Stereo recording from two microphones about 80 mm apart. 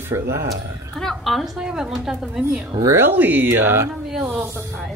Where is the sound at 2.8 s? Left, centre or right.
Right.